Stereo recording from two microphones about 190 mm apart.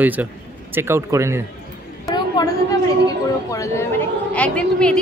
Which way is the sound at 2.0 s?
20° left (ahead or behind).